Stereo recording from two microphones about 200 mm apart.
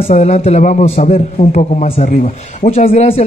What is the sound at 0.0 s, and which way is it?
A man's voice, 35° left (ahead or behind).